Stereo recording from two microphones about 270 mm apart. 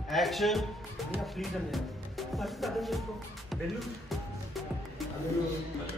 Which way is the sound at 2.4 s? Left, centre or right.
Centre.